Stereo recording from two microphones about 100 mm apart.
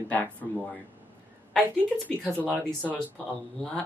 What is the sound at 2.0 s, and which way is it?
Speech, 10° left (ahead or behind).